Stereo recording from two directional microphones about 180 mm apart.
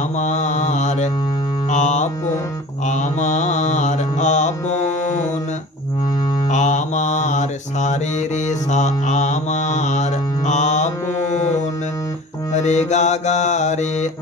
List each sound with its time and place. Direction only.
0.2 s mantra: 40° left (ahead or behind)
1.7 s music: 40° left (ahead or behind)
2.9 s mantra: 40° left (ahead or behind)
6.5 s mantra: 40° left (ahead or behind)
12.5 s mantra: 40° left (ahead or behind)